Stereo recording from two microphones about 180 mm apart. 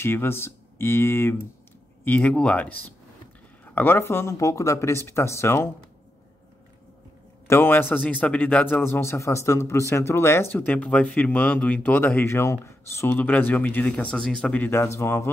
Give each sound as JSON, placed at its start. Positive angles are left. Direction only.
{"t": 0.0, "sound": "speech", "side_deg": 15}
{"t": 7.4, "sound": "speech", "side_deg": 15}